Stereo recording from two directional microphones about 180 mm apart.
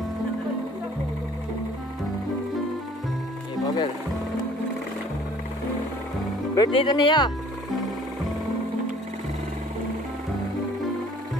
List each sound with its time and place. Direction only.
3.6 s music: 20° left (ahead or behind)
6.5 s speech: 25° left (ahead or behind)